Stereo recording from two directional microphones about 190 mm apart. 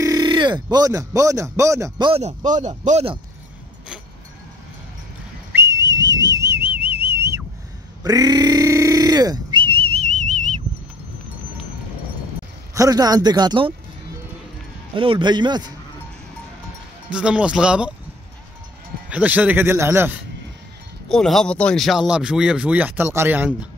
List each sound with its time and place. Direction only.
0.0 s speech: 20° right (ahead or behind)
5.5 s whistling: 15° right (ahead or behind)
8.0 s speech: 20° right (ahead or behind)
12.7 s speech: 20° right (ahead or behind)
15.0 s speech: 25° right (ahead or behind)
17.1 s speech: 5° right (ahead or behind)
19.0 s speech: 10° right (ahead or behind)
21.1 s speech: 5° left (ahead or behind)